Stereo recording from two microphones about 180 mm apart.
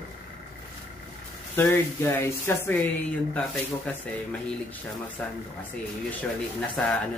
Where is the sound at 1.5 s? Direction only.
10° left (ahead or behind).